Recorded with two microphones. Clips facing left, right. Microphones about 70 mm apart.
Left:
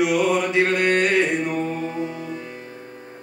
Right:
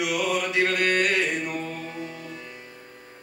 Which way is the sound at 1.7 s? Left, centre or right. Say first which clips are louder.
Left 8 dB; centre.